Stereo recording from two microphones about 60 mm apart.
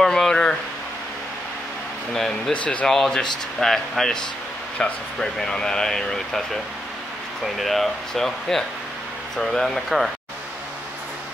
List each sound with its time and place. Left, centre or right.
0.0 s a sound: centre
2.1 s speech: centre
2.5 s speech: left
2.9 s speech: centre